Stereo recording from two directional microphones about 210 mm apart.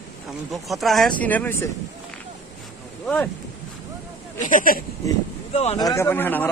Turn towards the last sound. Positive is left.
turn(degrees=10)  # may be behind; listen again after turning